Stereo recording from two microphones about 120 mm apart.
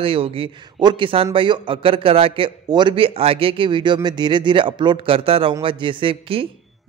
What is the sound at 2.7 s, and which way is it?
A man's voice, 40° right (ahead or behind).